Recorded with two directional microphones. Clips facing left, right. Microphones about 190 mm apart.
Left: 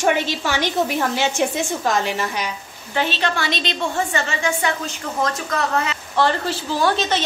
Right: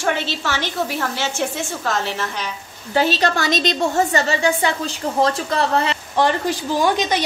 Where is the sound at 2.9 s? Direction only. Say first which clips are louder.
Right 4 dB; 40° right (ahead or behind).